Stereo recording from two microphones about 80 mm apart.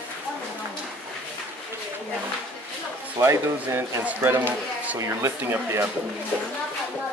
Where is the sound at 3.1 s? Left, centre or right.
Right.